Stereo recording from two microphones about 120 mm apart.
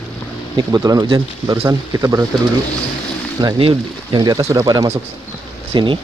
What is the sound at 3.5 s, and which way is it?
Speech, 50° right (ahead or behind).